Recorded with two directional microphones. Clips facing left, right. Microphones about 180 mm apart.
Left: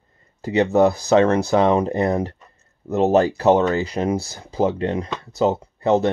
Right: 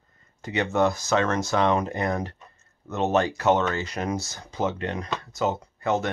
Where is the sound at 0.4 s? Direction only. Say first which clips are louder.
Left 7 dB; 35° left (ahead or behind).